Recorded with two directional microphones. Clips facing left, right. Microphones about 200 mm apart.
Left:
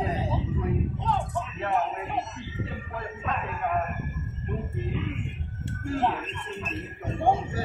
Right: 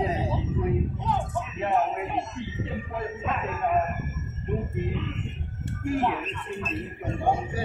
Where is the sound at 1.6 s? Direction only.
20° right (ahead or behind).